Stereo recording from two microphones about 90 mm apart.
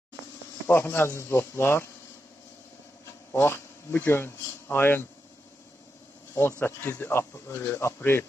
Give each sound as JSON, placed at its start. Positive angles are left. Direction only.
{"t": 0.7, "sound": "a man's voice", "side_deg": 25}
{"t": 3.3, "sound": "speech", "side_deg": 25}
{"t": 6.6, "sound": "a man's voice", "side_deg": 20}